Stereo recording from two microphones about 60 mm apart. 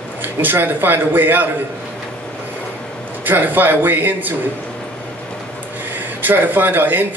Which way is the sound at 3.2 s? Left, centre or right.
Right.